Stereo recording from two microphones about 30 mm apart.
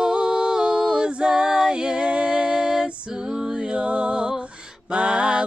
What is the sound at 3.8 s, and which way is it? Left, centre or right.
Music, right.